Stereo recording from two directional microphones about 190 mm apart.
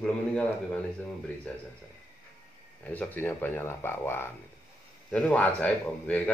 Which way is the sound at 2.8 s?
10° left (ahead or behind).